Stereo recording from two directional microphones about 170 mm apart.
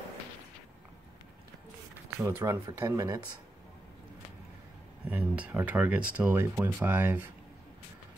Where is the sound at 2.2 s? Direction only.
15° right (ahead or behind).